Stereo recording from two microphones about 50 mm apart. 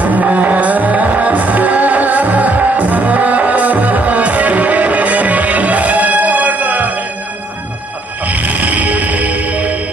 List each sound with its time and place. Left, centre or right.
0.0 s music: right
8.3 s music: right